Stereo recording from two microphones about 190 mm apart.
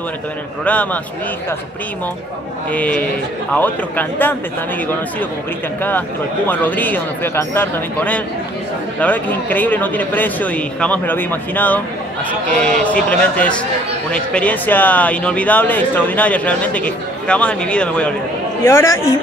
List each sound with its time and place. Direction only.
2.7 s speech: 10° left (ahead or behind)
5.8 s speech: 10° left (ahead or behind)